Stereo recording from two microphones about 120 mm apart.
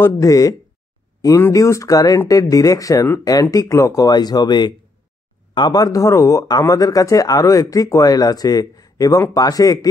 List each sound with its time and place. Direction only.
0.0 s speech: 25° left (ahead or behind)